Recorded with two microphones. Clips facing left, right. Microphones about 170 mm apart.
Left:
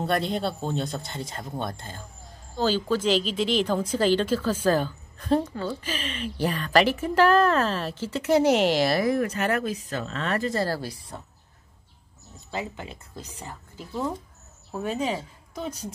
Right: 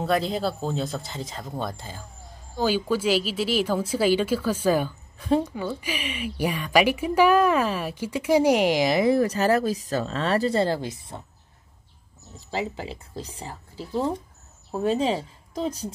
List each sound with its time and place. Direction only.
0.0 s speech: centre (ahead or behind); by 9.1 s 15° right (ahead or behind)
9.1 s speech: 35° right (ahead or behind)
12.4 s a woman's voice: 30° right (ahead or behind)